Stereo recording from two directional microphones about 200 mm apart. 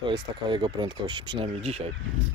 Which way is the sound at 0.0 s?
25° right (ahead or behind).